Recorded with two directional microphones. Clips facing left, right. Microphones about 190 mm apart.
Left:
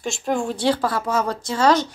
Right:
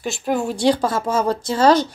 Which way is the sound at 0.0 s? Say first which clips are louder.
Right 2 dB; 5° right (ahead or behind).